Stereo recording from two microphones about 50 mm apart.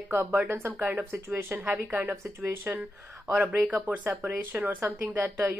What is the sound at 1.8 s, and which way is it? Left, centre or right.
Speech, right.